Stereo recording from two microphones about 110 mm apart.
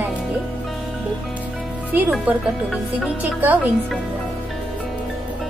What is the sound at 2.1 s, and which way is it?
Speech, 5° right (ahead or behind).